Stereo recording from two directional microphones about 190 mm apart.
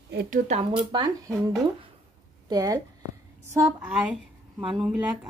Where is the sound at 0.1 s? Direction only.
60° right (ahead or behind).